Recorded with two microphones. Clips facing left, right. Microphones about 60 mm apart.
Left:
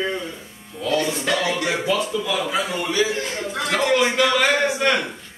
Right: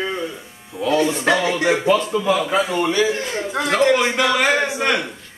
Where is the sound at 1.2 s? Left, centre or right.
Right.